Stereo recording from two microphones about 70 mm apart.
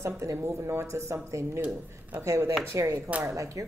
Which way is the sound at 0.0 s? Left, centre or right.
Right.